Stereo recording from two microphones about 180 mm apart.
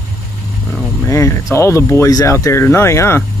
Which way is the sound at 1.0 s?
15° left (ahead or behind).